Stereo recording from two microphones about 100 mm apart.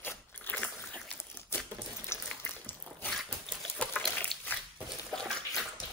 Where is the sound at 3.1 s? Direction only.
Centre (ahead or behind).